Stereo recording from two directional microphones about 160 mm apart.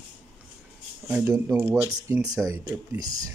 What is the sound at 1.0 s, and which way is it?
Speech, 5° right (ahead or behind).